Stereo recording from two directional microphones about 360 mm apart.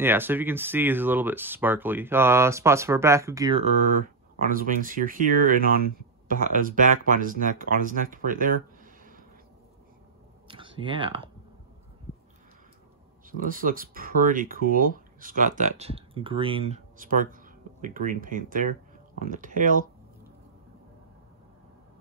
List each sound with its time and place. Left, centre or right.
0.0 s speech: centre; by 8.5 s right
10.5 s a sound: centre
13.3 s speech: right